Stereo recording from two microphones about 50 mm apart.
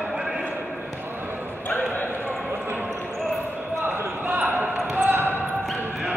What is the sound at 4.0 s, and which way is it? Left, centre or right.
Basketball bounce, right.